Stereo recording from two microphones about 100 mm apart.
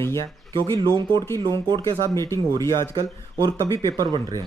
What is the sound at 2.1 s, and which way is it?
Speech, 30° left (ahead or behind).